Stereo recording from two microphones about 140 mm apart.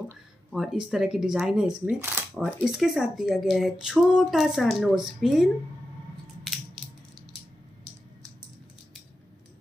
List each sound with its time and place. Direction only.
0.5 s speech: 5° right (ahead or behind)
6.4 s crushing: centre (ahead or behind)